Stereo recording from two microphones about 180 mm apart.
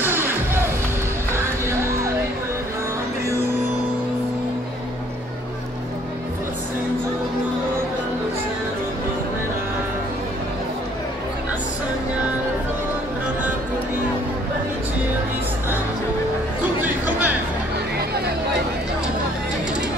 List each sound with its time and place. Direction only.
0.0 s music: 10° right (ahead or behind)
16.8 s music: 10° right (ahead or behind)
17.9 s chatter: 60° right (ahead or behind)